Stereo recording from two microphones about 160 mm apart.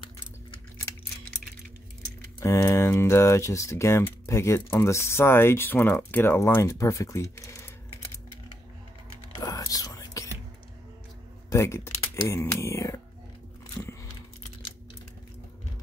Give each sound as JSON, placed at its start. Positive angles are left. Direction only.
{"t": 2.4, "sound": "speech", "side_deg": 20}
{"t": 9.4, "sound": "whispering", "side_deg": 20}
{"t": 11.5, "sound": "speech", "side_deg": 15}